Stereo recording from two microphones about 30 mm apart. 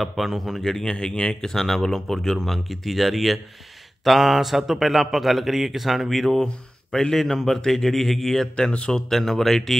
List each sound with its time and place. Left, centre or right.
0.0 s speech: centre
0.8 s speech: left
1.5 s speech: centre
6.1 s speech: centre